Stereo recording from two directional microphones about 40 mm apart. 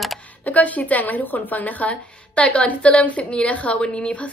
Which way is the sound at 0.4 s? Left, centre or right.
Left.